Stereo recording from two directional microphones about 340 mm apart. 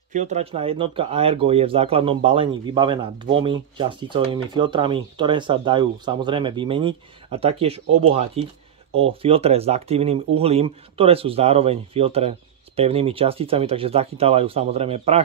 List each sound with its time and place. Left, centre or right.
0.1 s speech: centre